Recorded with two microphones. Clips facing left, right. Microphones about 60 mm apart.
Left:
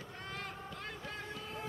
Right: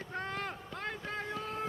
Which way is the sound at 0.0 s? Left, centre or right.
Right.